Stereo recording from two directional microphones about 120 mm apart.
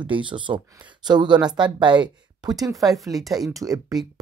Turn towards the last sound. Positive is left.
turn(degrees=-30)  # may be behind; listen again after turning